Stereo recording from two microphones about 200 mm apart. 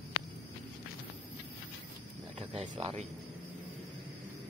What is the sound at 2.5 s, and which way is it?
Speech, 35° right (ahead or behind).